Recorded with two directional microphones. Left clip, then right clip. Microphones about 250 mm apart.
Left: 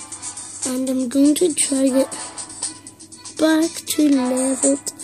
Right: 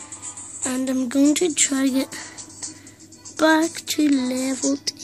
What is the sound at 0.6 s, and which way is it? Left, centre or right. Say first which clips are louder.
Speech: left 2 dB; centre.